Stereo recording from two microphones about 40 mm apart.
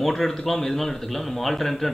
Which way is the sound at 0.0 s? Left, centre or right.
Centre.